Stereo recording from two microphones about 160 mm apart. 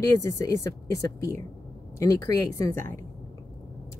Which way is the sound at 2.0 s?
20° left (ahead or behind).